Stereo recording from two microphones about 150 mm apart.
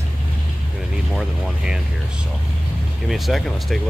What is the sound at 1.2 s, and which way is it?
Speech, 5° right (ahead or behind).